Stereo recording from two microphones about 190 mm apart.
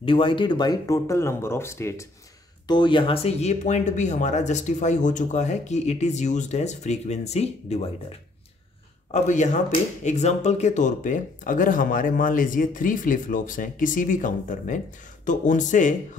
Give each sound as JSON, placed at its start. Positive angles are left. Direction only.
{"t": 0.0, "sound": "speech", "side_deg": 25}
{"t": 2.7, "sound": "speech", "side_deg": 25}
{"t": 9.1, "sound": "speech", "side_deg": 40}